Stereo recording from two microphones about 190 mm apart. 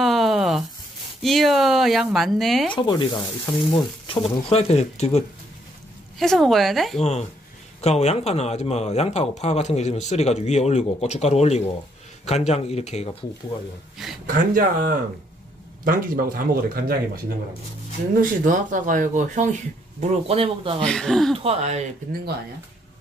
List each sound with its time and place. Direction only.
0.0 s a sound: centre (ahead or behind)
1.2 s speech: centre (ahead or behind)
2.7 s sizzle: 25° left (ahead or behind)
4.1 s speech: 30° left (ahead or behind)
6.1 s speech: centre (ahead or behind)
7.0 s speech: 35° left (ahead or behind)
14.2 s speech: 45° right (ahead or behind)
18.2 s speech: 45° right (ahead or behind)
20.8 s speech: 5° left (ahead or behind)
21.4 s speech: 35° right (ahead or behind)